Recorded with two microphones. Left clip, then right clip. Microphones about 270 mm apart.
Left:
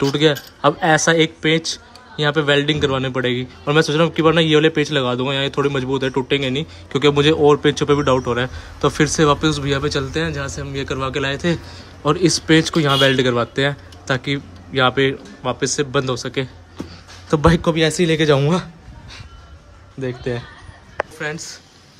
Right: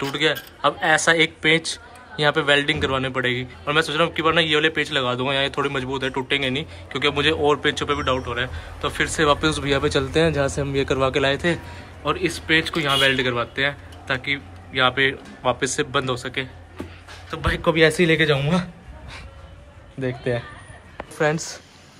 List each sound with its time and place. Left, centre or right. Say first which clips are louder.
0.0 s a man's voice: left 5 dB; centre
17.6 s a man's voice: even; centre
18.3 s a man's voice: left 5 dB; left
20.0 s a man's voice: even; centre